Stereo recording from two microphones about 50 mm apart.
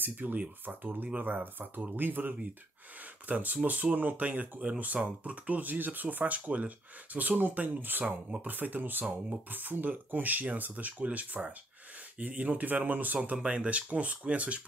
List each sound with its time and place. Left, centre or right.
0.0 s speech: right
3.0 s a sound: right
3.6 s speech: right